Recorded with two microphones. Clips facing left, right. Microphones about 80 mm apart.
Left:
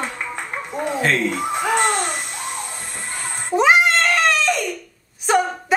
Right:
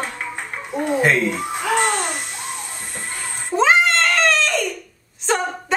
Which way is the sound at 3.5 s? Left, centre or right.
Centre.